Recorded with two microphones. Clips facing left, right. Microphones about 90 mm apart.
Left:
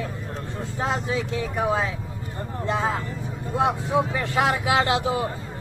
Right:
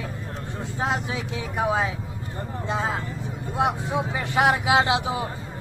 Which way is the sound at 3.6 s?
15° right (ahead or behind).